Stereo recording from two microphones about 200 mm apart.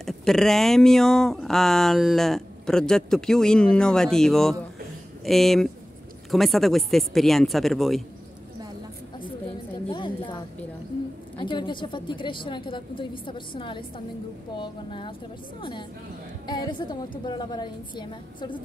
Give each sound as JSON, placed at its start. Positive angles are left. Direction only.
{"t": 0.0, "sound": "speech", "side_deg": 0}
{"t": 9.8, "sound": "a sound", "side_deg": 25}
{"t": 11.3, "sound": "a woman's voice", "side_deg": 25}
{"t": 16.4, "sound": "a woman's voice", "side_deg": 20}